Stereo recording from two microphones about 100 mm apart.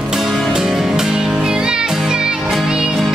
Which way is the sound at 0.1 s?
Centre (ahead or behind).